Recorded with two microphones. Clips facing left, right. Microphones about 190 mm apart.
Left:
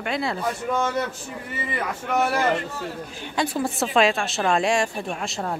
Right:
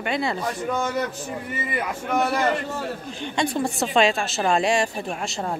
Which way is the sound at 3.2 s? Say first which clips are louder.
Right 1 dB; 5° left (ahead or behind).